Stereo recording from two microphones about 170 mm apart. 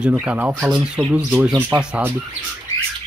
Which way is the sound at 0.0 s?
10° right (ahead or behind).